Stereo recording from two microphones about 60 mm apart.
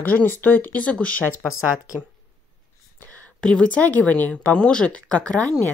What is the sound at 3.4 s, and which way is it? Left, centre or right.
Speech, centre.